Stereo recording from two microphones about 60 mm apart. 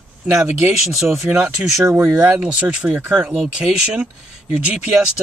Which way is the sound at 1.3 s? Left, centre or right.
Centre.